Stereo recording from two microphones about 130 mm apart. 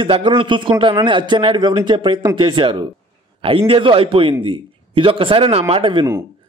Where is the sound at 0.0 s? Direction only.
40° right (ahead or behind).